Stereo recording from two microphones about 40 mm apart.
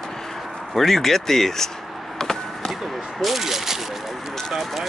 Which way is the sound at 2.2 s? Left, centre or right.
Centre.